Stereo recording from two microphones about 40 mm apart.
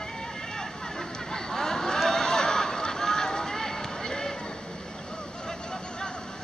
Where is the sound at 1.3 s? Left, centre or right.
Centre.